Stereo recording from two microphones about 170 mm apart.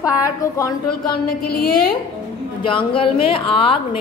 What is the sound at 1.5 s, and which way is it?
Speech, 65° left (ahead or behind).